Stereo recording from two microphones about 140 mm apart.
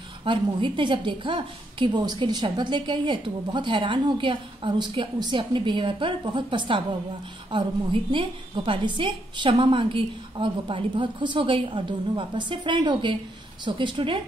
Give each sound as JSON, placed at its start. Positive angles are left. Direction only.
{"t": 0.2, "sound": "a woman's voice", "side_deg": -35}